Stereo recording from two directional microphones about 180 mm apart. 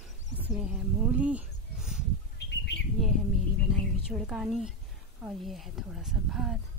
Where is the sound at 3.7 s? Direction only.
Centre (ahead or behind).